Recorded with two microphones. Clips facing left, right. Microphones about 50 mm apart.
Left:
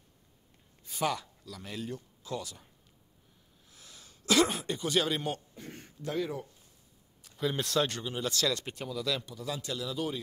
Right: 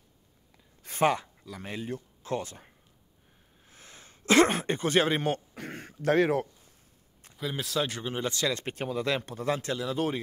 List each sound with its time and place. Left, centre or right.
1.0 s speech: right
3.6 s a sound: right
5.5 s a sound: right
7.3 s speech: centre
8.0 s speech: right
8.5 s speech: right